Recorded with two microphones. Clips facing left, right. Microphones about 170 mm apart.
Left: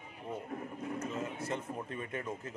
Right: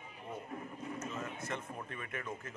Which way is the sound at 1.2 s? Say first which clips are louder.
Left 4 dB; 30° left (ahead or behind).